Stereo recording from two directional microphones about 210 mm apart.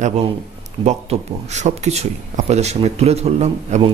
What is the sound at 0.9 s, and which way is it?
Speech, 35° right (ahead or behind).